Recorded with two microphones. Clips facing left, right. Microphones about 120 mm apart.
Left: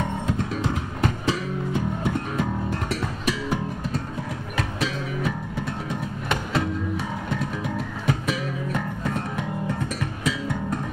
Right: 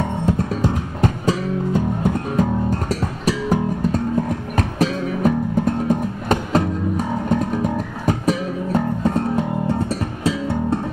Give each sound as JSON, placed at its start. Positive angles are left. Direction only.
{"t": 1.2, "sound": "music", "side_deg": -40}